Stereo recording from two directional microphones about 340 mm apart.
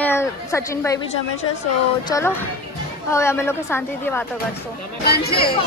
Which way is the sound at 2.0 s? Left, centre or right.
Centre.